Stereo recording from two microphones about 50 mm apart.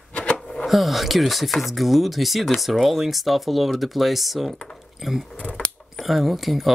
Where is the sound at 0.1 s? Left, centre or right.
Left.